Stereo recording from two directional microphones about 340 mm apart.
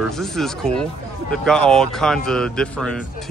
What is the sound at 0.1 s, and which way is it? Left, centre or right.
Speech, centre.